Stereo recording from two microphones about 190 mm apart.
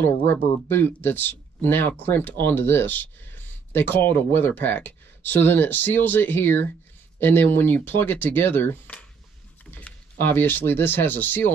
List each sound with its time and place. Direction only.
0.3 s speech: 10° left (ahead or behind)